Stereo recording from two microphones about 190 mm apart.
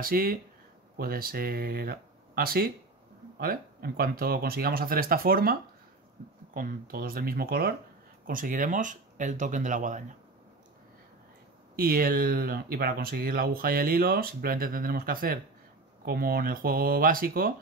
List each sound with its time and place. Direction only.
0.0 s speech: 50° right (ahead or behind)
11.7 s speech: 50° right (ahead or behind)